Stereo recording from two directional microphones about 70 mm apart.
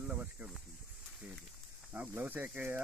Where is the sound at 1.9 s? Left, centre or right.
Right.